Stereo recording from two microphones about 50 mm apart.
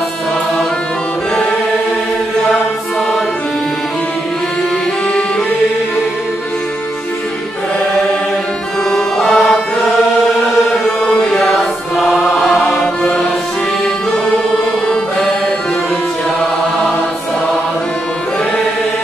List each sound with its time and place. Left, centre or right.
8.9 s music: centre
10.7 s chant: centre
12.0 s choir: centre
12.8 s music: centre